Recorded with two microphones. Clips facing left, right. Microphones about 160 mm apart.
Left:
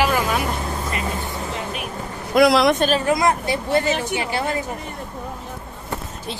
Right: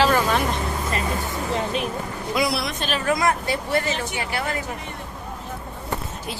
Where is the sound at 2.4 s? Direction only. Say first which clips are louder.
Left 14 dB; 90° left.